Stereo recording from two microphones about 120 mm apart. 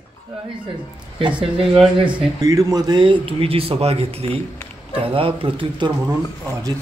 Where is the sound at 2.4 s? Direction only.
30° right (ahead or behind).